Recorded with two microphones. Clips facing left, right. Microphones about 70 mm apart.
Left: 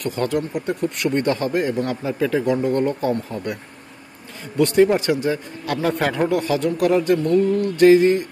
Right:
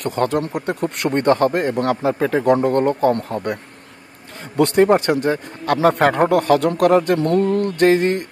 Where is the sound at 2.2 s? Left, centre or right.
Right.